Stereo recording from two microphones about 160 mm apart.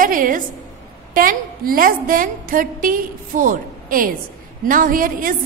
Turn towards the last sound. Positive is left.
turn(degrees=-60)  # may be behind; listen again after turning